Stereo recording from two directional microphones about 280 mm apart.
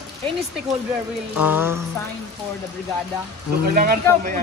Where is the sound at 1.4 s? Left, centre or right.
Centre.